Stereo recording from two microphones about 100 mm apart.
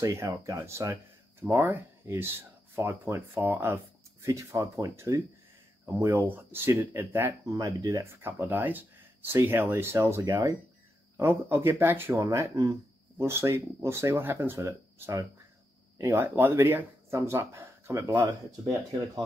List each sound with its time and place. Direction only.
0.0 s speech: 30° right (ahead or behind)
7.5 s speech: 35° right (ahead or behind)